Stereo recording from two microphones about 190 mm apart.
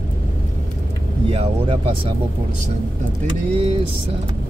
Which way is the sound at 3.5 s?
25° right (ahead or behind).